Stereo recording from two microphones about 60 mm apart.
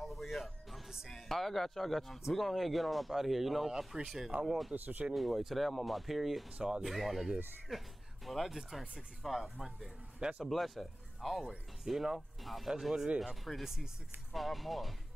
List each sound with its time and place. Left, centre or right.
0.0 s music: centre
1.1 s speech: centre
4.7 s speech: right
5.1 s speech: centre